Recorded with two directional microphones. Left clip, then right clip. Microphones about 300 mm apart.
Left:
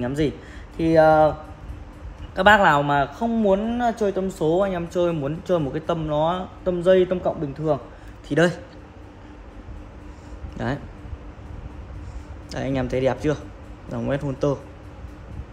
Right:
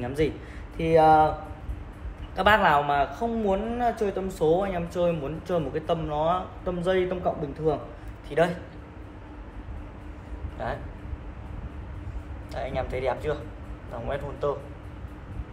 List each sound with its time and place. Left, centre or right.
0.0 s a man's voice: left
2.3 s a man's voice: left
8.3 s a man's voice: left
10.6 s speech: left
12.4 s speech: left